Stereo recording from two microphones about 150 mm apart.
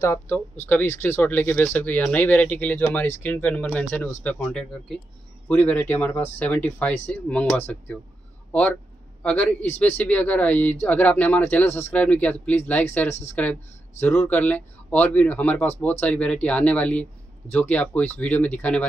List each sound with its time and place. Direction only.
0.0 s speech: 20° left (ahead or behind)